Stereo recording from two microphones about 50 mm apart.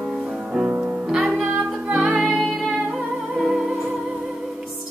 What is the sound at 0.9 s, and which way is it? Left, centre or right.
Music, centre.